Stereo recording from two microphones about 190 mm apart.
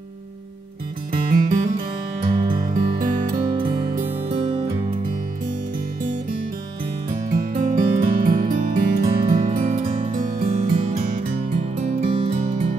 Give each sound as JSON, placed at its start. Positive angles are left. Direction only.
{"t": 1.1, "sound": "music", "side_deg": -45}
{"t": 2.2, "sound": "music", "side_deg": -20}
{"t": 2.7, "sound": "music", "side_deg": -45}
{"t": 4.3, "sound": "music", "side_deg": -25}
{"t": 7.2, "sound": "music", "side_deg": -40}
{"t": 9.2, "sound": "music", "side_deg": -25}
{"t": 10.1, "sound": "music", "side_deg": -45}
{"t": 10.7, "sound": "music", "side_deg": -30}
{"t": 11.0, "sound": "music", "side_deg": -45}